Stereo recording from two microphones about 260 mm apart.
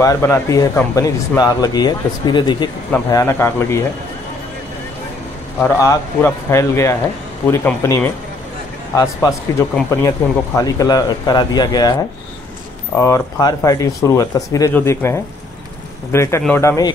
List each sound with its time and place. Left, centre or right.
0.0 s speech: centre
5.6 s speech: centre
13.0 s speech: centre